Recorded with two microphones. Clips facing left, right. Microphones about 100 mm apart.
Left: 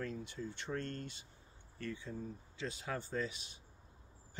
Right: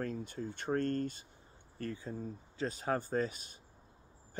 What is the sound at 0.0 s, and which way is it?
Speech, 45° right (ahead or behind).